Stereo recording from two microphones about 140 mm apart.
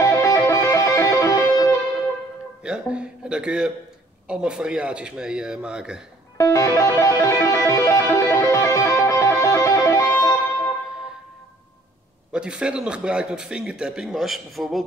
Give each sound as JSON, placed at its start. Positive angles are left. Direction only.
{"t": 0.0, "sound": "music", "side_deg": 20}
{"t": 2.6, "sound": "a sound", "side_deg": -5}
{"t": 4.3, "sound": "a man's voice", "side_deg": -5}
{"t": 6.3, "sound": "music", "side_deg": 20}
{"t": 12.3, "sound": "a man's voice", "side_deg": -5}